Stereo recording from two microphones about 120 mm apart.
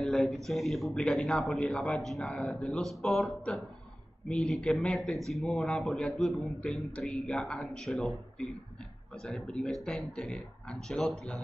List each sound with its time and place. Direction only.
0.0 s a man's voice: 5° left (ahead or behind)